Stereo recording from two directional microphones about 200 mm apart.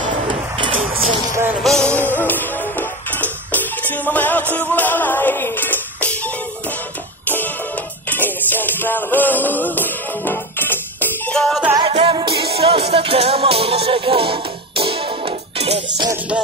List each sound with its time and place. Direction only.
1.6 s music: centre (ahead or behind)
11.8 s music: 25° right (ahead or behind)